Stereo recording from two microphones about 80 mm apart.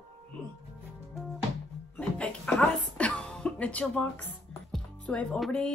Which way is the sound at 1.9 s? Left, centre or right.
Centre.